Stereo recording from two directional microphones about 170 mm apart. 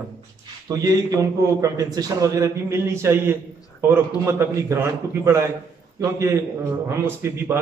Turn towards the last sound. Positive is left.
turn(degrees=-15)  # may be behind; listen again after turning